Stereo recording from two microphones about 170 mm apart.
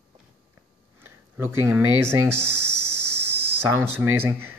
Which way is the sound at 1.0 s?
15° right (ahead or behind).